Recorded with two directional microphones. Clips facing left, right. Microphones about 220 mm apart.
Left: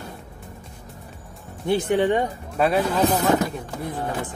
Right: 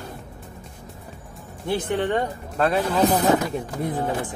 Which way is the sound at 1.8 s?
10° left (ahead or behind).